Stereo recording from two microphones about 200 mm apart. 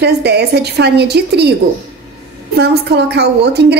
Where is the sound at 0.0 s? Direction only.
55° right (ahead or behind).